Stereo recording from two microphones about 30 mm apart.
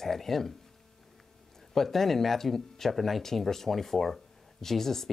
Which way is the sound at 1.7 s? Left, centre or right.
Centre.